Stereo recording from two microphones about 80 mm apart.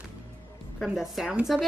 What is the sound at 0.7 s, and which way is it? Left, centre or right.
Speech, centre.